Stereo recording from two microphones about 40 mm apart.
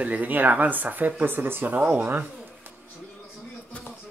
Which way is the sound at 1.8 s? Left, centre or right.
Right.